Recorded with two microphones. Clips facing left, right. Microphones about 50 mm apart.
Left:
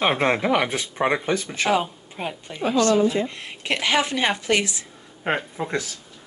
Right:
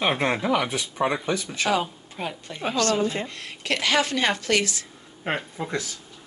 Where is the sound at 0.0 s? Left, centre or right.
Left.